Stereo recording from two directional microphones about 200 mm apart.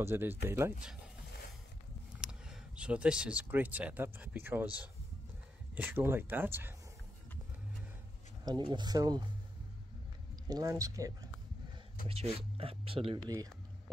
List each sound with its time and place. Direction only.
0.0 s speech: 10° right (ahead or behind)
2.1 s speech: 5° right (ahead or behind)
5.8 s speech: 10° right (ahead or behind)
8.5 s speech: 20° right (ahead or behind)
10.5 s speech: 15° right (ahead or behind)
12.1 s speech: 30° right (ahead or behind)